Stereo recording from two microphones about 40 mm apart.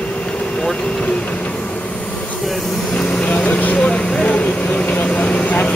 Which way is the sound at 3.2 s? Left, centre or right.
Left.